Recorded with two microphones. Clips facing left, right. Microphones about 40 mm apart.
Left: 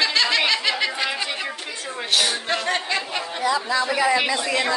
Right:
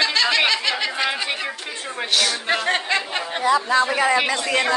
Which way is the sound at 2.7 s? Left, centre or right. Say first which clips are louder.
Right 2 dB; right.